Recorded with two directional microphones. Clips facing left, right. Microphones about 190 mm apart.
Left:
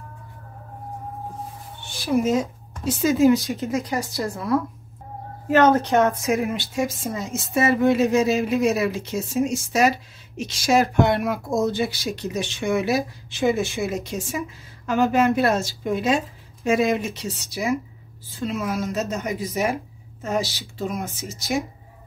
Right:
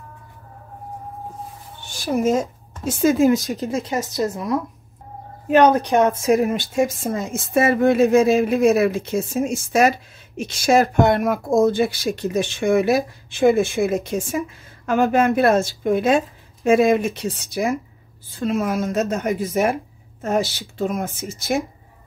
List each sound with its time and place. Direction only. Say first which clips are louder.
1.9 s speech: right 1 dB; 45° right (ahead or behind)
3.6 s a woman's voice: right 1 dB; 25° right (ahead or behind)
6.2 s a woman's voice: right 5 dB; 40° right (ahead or behind); by 21.5 s 55° right (ahead or behind)